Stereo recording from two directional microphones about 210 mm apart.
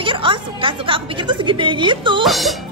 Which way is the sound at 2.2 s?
Centre (ahead or behind).